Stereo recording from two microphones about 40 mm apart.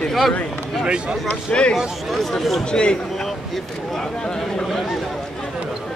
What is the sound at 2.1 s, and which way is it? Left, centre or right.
Speech, centre.